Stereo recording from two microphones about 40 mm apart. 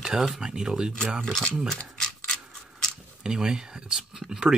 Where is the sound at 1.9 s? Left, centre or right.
Centre.